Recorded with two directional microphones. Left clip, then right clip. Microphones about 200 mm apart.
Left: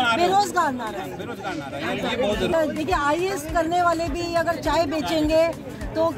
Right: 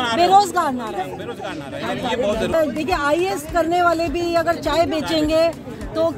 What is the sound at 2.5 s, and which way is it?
A woman's voice, 40° right (ahead or behind).